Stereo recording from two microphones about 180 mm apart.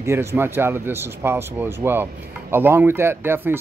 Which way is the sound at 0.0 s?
15° right (ahead or behind).